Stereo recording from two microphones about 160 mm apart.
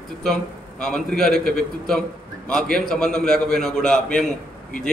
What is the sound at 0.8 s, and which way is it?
A man's voice, 5° left (ahead or behind).